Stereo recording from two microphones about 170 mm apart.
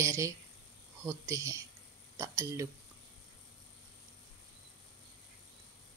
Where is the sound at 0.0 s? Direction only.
15° right (ahead or behind).